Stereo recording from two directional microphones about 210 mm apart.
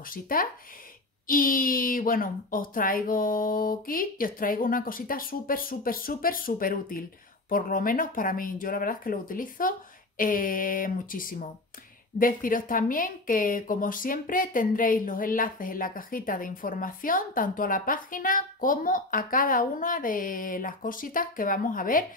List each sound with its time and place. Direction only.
0.0 s speech: 40° left (ahead or behind)